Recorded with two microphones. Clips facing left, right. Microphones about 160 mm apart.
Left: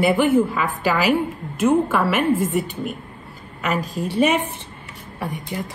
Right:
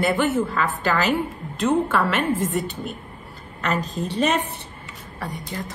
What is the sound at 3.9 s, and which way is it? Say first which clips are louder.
A woman's voice: left 4 dB; 10° left (ahead or behind).